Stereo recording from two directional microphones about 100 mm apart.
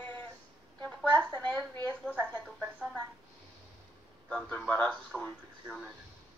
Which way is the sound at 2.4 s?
5° right (ahead or behind).